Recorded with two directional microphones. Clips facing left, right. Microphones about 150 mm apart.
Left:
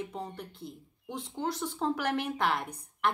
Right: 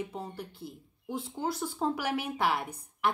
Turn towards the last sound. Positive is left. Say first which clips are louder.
# even
turn(degrees=-5)  # may be behind; listen again after turning